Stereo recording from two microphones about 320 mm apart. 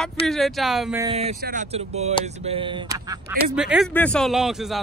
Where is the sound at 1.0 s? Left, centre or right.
Centre.